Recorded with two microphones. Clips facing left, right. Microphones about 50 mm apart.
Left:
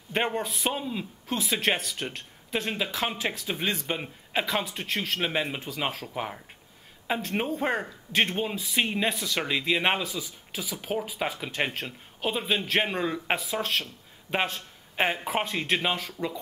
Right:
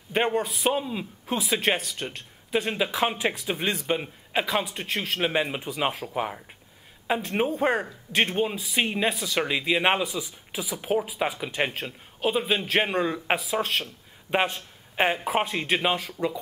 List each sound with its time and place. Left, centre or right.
0.1 s a man's voice: centre